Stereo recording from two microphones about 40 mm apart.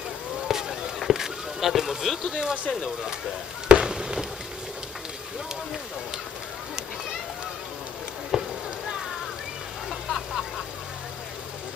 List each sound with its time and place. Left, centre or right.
0.4 s a sound: centre
2.7 s speech: centre
3.6 s fireworks: centre
8.3 s chop: centre
9.8 s vehicle: centre